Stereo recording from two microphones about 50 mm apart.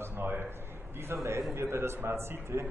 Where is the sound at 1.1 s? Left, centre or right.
Right.